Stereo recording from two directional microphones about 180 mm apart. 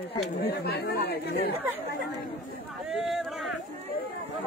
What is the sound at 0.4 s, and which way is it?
Speech, 60° left (ahead or behind).